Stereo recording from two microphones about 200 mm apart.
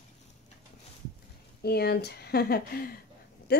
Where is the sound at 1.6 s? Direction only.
55° left (ahead or behind).